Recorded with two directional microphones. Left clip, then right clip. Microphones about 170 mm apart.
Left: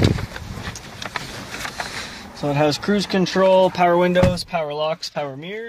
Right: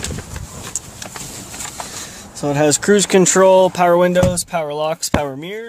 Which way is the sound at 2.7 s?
55° right (ahead or behind).